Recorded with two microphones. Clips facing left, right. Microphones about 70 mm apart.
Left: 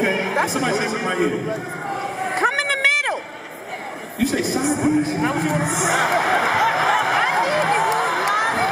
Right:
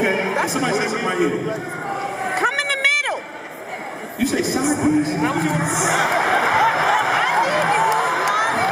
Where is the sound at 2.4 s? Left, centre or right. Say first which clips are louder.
Left 2 dB; left.